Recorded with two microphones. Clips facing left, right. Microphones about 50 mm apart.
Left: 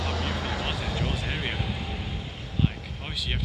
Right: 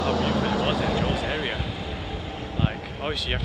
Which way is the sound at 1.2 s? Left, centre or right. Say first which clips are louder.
Right 4 dB; centre.